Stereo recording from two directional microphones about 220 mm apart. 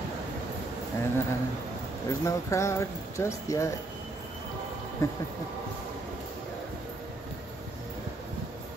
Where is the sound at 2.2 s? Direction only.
15° left (ahead or behind).